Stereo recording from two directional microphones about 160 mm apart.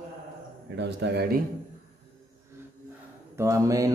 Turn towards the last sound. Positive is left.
turn(degrees=-20)  # may be behind; listen again after turning